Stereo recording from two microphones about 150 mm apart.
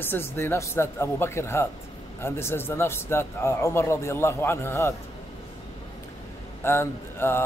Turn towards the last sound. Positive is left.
turn(degrees=15)  # may be behind; listen again after turning